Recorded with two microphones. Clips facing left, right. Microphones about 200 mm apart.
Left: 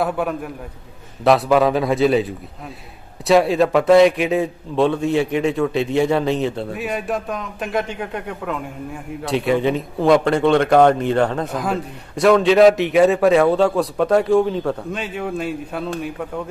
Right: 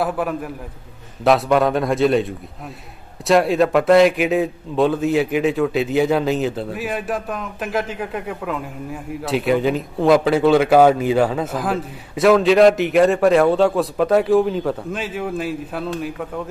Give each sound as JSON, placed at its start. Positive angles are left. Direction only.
{"t": 0.0, "sound": "a man's voice", "side_deg": 0}